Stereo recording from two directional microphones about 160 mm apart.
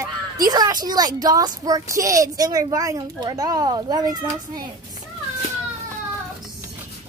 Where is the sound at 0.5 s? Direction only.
25° right (ahead or behind).